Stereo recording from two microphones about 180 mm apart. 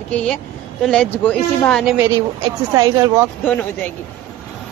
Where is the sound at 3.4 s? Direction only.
5° left (ahead or behind).